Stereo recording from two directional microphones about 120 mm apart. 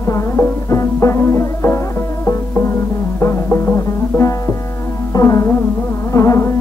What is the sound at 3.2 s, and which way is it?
Music, 20° left (ahead or behind).